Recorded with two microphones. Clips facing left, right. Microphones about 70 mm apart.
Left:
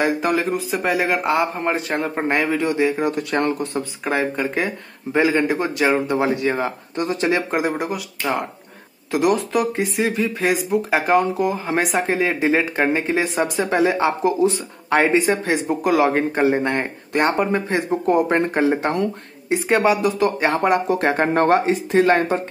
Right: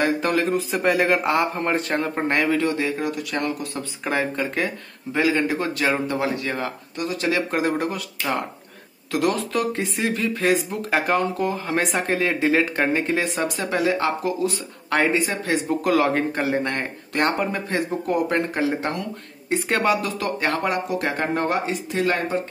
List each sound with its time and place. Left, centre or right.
0.0 s a man's voice: centre
3.1 s speech: left
4.0 s a man's voice: centre
5.1 s a man's voice: left; by 8.4 s centre
9.1 s a man's voice: centre
19.5 s speech: centre; by 21.4 s left
21.4 s speech: left